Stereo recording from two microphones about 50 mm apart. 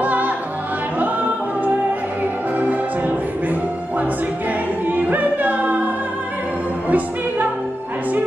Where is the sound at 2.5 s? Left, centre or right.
Right.